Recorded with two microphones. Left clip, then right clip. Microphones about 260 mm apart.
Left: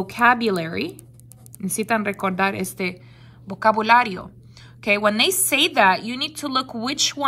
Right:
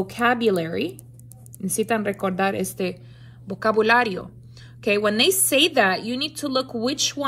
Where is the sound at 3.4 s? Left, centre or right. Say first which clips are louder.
Left 2 dB; left.